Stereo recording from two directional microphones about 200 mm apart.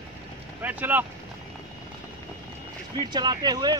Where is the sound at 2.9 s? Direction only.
20° right (ahead or behind).